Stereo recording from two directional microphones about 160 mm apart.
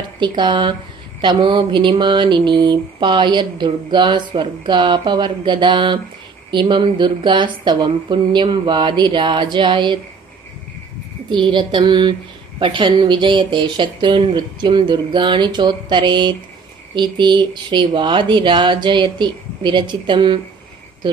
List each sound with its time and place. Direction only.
0.2 s a woman's voice: 30° right (ahead or behind)
11.2 s a woman's voice: 30° right (ahead or behind)